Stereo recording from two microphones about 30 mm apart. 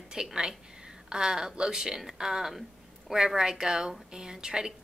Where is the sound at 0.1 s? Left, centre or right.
Right.